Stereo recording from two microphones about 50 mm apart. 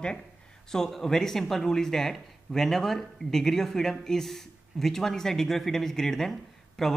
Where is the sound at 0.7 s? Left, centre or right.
Centre.